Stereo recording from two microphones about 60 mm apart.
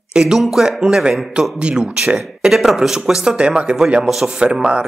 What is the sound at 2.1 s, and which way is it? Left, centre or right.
Speech, centre.